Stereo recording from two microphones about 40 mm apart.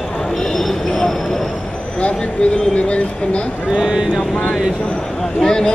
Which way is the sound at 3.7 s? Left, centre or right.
Centre.